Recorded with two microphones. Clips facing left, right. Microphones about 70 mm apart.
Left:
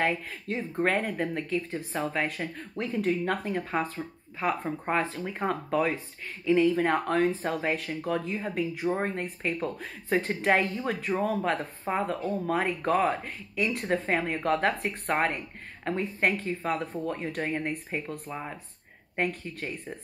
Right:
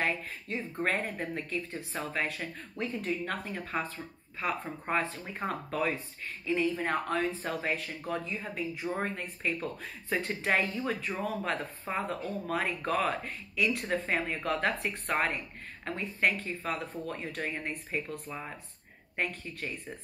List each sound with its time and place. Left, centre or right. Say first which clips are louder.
0.0 s speech: left 4 dB; left
5.0 s speech: left 5 dB; left
6.4 s speech: left 7 dB; left